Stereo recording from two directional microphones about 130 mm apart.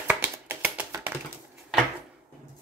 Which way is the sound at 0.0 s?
15° right (ahead or behind).